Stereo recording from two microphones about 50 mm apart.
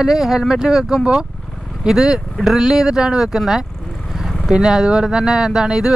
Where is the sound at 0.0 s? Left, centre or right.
Centre.